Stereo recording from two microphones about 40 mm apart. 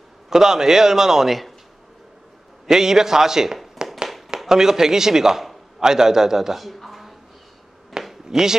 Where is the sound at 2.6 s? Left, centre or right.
Centre.